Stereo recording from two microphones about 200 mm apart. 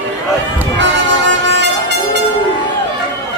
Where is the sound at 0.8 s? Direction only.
65° right (ahead or behind).